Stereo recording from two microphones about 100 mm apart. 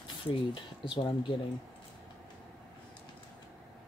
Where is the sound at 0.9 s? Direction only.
65° left (ahead or behind).